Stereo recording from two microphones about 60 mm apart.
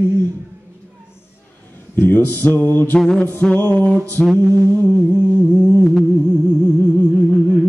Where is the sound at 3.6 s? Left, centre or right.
Left.